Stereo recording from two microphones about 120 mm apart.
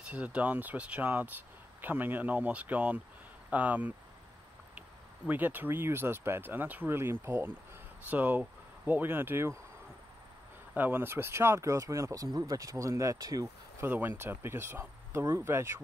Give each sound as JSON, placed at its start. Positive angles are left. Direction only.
{"t": 0.1, "sound": "speech", "side_deg": -10}
{"t": 10.7, "sound": "speech", "side_deg": -15}
{"t": 13.8, "sound": "speech", "side_deg": -15}